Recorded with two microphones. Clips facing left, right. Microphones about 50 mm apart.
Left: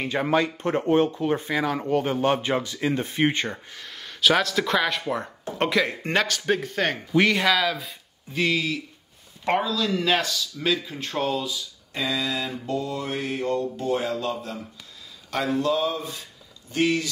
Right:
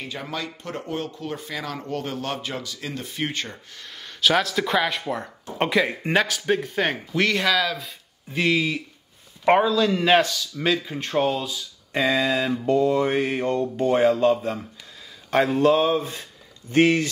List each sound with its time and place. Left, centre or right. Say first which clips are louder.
0.0 s speech: left 9 dB; left
3.8 s speech: even; centre
7.1 s speech: left 4 dB; centre
8.3 s speech: right 2 dB; centre
12.2 s mantra: right 6 dB; right